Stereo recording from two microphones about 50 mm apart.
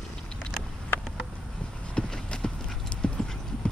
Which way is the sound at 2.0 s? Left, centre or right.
Centre.